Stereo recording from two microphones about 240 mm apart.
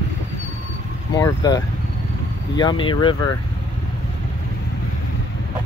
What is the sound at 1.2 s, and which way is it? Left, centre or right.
Speech, centre.